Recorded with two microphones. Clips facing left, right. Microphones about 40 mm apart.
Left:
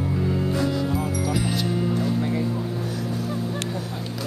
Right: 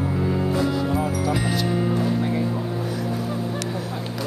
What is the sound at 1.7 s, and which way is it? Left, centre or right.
Music, centre.